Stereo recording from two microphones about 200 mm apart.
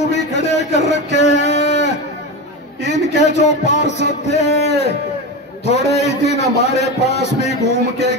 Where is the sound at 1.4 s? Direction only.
35° left (ahead or behind).